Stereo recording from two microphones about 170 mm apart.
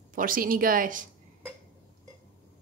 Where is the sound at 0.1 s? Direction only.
55° right (ahead or behind).